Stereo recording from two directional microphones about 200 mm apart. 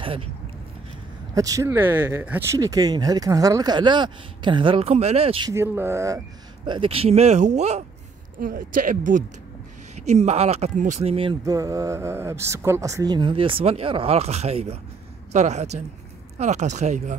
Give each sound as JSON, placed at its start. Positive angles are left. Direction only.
{"t": 1.3, "sound": "speech", "side_deg": -15}
{"t": 5.5, "sound": "speech", "side_deg": -15}
{"t": 8.4, "sound": "speech", "side_deg": -45}